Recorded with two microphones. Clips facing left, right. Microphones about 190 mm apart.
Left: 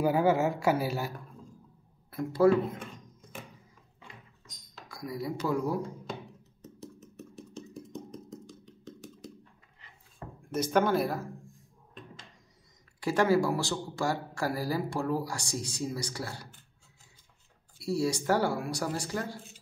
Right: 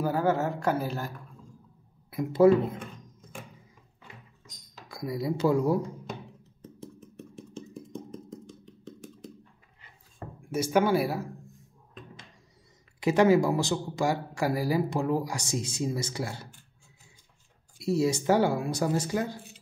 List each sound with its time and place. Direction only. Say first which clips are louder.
0.0 s a woman's voice: left 1 dB; 10° left (ahead or behind)
2.4 s speech: right 3 dB; 20° right (ahead or behind)
5.0 s speech: right 6 dB; 25° right (ahead or behind)
6.6 s a sound: right 2 dB; 5° left (ahead or behind)
10.5 s speech: right 2 dB; 10° right (ahead or behind)
13.0 s speech: right 4 dB; 20° right (ahead or behind)
17.7 s speech: right 4 dB; 20° right (ahead or behind)